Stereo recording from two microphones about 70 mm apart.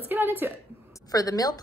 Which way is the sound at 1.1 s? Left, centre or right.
Left.